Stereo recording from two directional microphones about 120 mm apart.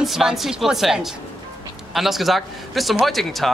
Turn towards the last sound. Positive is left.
turn(degrees=0)  # may be behind; listen again after turning